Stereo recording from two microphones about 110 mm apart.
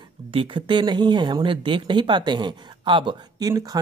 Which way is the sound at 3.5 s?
35° right (ahead or behind).